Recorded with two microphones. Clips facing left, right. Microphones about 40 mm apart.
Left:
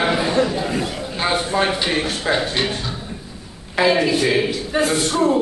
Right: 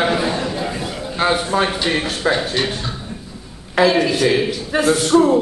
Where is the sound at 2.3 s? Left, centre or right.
Centre.